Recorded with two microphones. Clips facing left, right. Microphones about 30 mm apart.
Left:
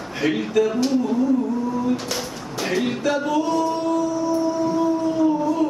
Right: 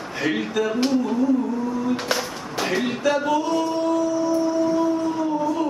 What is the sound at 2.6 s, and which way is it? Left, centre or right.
Speech, centre.